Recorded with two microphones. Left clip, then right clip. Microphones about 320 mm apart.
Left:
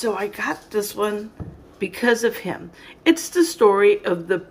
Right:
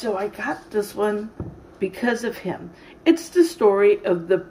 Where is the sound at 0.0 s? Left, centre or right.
Centre.